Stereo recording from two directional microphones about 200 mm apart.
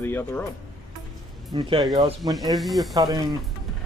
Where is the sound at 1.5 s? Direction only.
20° right (ahead or behind).